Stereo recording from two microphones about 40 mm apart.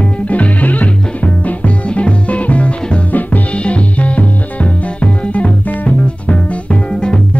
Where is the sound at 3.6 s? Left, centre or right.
Left.